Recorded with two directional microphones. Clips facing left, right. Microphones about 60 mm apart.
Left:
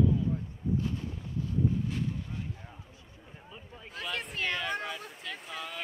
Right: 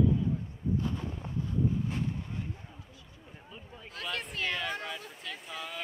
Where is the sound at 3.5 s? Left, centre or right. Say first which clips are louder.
Left 1 dB; centre.